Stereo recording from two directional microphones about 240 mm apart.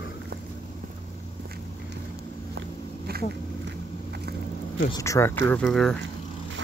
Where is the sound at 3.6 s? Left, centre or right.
Right.